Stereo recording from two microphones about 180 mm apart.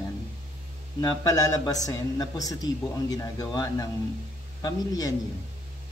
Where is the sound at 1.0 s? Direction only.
20° left (ahead or behind).